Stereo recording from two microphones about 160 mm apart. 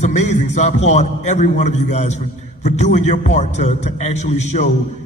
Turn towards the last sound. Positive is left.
turn(degrees=45)  # may be behind; listen again after turning